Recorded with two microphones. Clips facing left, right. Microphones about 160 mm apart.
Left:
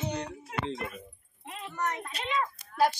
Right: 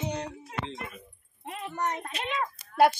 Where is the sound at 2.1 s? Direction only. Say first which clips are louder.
Even; 65° right (ahead or behind).